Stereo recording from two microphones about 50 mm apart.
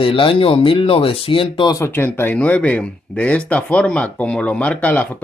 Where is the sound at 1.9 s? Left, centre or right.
Left.